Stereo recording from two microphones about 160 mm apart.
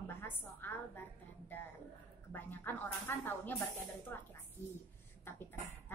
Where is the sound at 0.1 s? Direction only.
15° left (ahead or behind).